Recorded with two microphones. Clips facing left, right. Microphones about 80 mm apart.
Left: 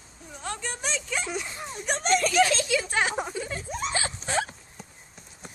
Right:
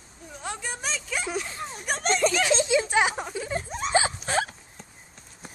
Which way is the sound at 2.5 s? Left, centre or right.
Right.